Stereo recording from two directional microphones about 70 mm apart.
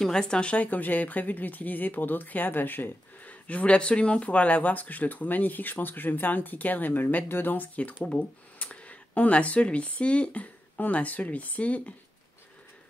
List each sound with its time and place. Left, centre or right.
0.0 s a woman's voice: centre